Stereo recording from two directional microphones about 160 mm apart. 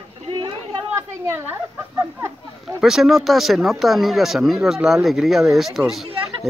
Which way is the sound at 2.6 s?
Centre (ahead or behind).